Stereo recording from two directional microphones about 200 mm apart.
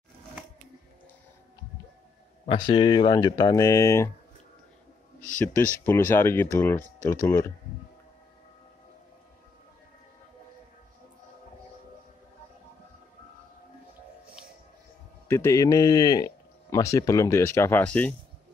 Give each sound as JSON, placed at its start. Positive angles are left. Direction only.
{"t": 2.4, "sound": "speech", "side_deg": 25}
{"t": 5.4, "sound": "speech", "side_deg": 10}
{"t": 15.2, "sound": "speech", "side_deg": 15}